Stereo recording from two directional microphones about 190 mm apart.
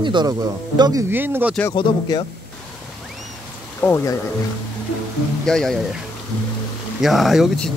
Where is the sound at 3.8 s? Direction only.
10° left (ahead or behind).